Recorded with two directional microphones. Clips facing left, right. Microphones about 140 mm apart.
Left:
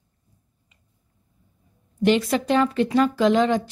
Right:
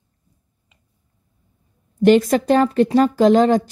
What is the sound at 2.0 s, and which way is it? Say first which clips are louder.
A woman's voice: right 6 dB; 45° right (ahead or behind).